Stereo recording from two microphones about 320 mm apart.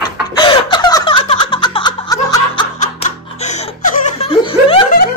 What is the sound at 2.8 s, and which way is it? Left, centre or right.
Laughter, left.